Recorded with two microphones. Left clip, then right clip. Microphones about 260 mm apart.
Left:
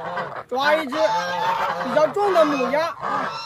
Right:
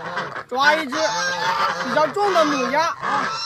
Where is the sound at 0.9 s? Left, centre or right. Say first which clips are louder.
Left 1 dB; right.